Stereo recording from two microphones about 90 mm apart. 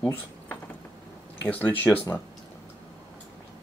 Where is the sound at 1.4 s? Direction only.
20° left (ahead or behind).